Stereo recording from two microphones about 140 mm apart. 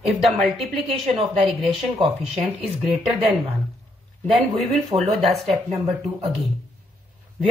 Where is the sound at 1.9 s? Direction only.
45° right (ahead or behind).